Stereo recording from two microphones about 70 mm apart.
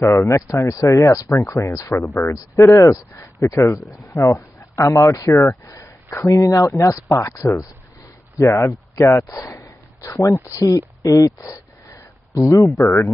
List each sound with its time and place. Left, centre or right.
0.0 s speech: left
2.3 s speech: left
8.6 s speech: left